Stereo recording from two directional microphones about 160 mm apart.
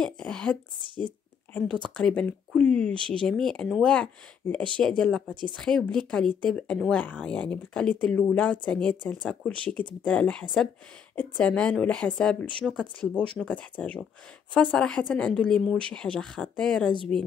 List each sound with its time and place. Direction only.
0.0 s speech: 5° left (ahead or behind)
0.8 s speech: 30° right (ahead or behind)
1.5 s speech: 5° left (ahead or behind)